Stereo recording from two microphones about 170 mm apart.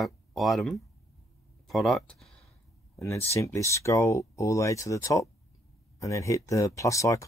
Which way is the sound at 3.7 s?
15° left (ahead or behind).